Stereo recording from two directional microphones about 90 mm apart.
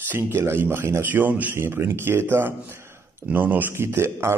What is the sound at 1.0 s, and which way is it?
A man's voice, 20° right (ahead or behind).